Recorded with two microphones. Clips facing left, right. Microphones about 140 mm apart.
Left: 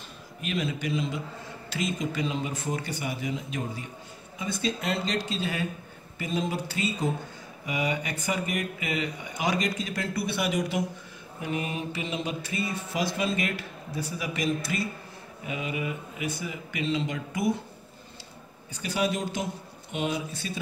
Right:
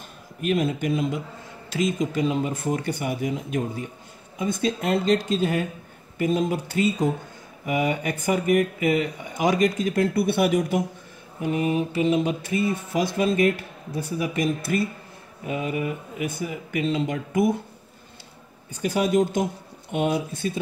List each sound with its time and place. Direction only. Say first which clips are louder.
0.4 s speech: right 7 dB; 50° right (ahead or behind)
18.7 s speech: right 6 dB; 45° right (ahead or behind)